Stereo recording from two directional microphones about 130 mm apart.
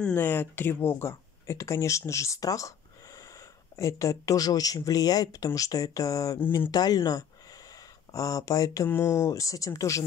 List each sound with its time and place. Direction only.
0.0 s speech: 15° left (ahead or behind)
6.7 s speech: 30° left (ahead or behind)